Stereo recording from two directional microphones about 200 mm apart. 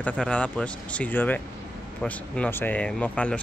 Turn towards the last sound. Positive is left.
turn(degrees=5)  # may be behind; listen again after turning